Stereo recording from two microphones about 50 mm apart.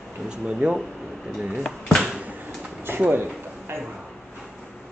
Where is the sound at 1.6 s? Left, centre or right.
Centre.